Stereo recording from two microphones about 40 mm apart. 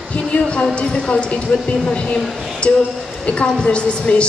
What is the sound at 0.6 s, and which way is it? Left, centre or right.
A woman's voice, left.